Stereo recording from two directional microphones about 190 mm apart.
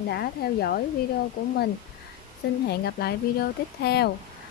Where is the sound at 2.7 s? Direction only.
55° left (ahead or behind).